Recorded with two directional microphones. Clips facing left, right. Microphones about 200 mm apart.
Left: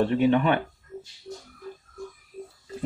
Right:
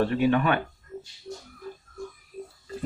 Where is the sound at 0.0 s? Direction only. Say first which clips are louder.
Left 2 dB; 25° left (ahead or behind).